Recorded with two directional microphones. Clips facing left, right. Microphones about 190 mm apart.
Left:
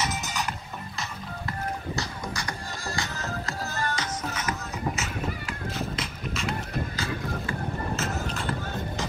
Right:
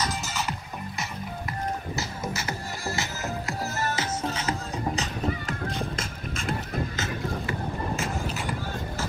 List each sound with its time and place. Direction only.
0.1 s music: centre (ahead or behind)
3.0 s music: 20° right (ahead or behind)
5.9 s music: 50° right (ahead or behind)